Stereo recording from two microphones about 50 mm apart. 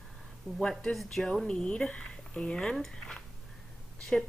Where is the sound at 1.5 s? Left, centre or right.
Centre.